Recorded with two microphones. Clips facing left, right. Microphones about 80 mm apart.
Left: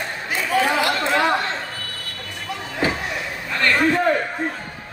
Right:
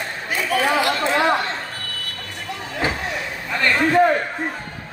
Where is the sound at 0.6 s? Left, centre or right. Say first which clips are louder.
Even; right.